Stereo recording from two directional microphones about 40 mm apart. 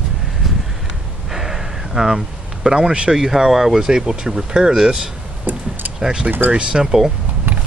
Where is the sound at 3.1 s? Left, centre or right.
Centre.